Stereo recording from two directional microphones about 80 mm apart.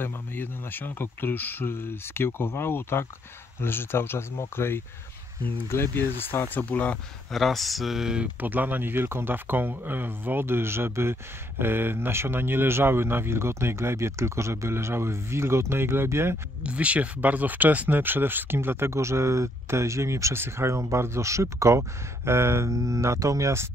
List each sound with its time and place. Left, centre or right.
0.0 s speech: left
7.3 s speech: centre
8.4 s speech: right
16.6 s speech: centre; by 23.7 s right